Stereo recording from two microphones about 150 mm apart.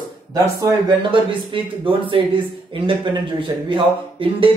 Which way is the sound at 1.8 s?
35° right (ahead or behind).